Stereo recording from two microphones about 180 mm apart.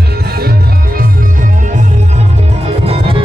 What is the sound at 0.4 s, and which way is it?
Music, 60° right (ahead or behind).